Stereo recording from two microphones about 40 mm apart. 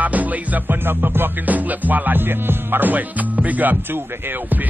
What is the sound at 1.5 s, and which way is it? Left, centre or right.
Music, right.